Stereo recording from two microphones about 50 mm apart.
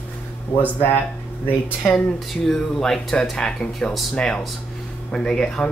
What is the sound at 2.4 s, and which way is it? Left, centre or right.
Speech, centre.